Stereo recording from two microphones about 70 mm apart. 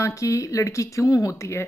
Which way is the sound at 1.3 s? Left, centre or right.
Left.